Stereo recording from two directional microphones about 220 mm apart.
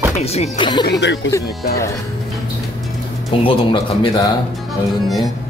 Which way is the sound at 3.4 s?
20° left (ahead or behind).